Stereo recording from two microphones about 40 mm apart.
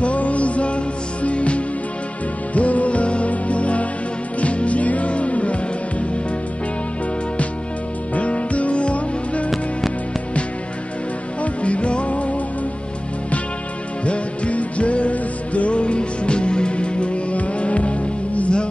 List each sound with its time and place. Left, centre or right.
0.0 s music: left
8.1 s music: left
11.4 s music: left
14.0 s music: left